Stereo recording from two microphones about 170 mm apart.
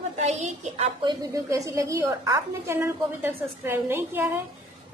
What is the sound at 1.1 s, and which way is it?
A woman's voice, 20° right (ahead or behind).